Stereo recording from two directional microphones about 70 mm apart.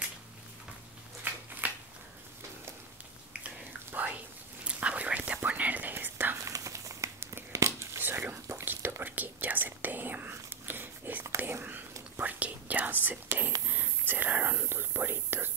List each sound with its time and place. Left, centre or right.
1.6 s a sound: right
3.4 s whispering: right
6.3 s whispering: right
8.0 s whispering: right